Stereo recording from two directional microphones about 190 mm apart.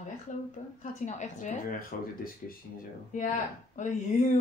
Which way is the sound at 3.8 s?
40° left (ahead or behind).